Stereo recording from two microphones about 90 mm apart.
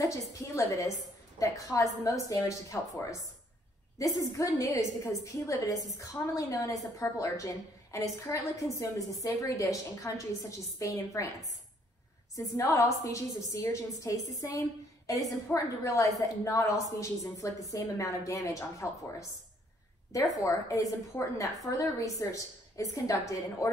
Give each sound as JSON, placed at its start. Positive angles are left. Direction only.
{"t": 0.0, "sound": "a woman's voice", "side_deg": 40}
{"t": 12.4, "sound": "a woman's voice", "side_deg": 35}
{"t": 20.3, "sound": "a woman's voice", "side_deg": 40}